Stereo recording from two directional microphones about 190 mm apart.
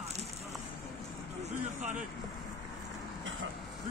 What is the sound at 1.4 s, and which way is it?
Vehicle, 40° right (ahead or behind).